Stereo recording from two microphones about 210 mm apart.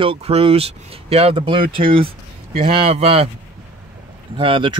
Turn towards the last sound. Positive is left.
turn(degrees=-25)  # may be behind; listen again after turning